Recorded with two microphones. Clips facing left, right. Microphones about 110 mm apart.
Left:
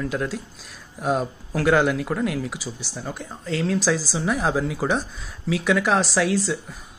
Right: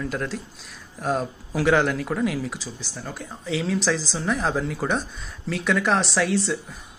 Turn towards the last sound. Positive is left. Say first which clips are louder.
# left 1 dB
turn(degrees=0)  # may be behind; listen again after turning